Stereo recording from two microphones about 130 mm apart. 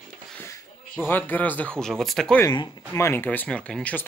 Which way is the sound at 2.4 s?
25° left (ahead or behind).